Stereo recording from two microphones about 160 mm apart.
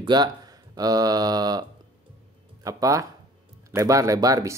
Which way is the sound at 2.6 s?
20° right (ahead or behind).